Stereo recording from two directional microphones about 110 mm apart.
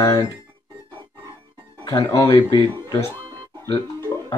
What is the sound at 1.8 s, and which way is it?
Speech, 30° left (ahead or behind).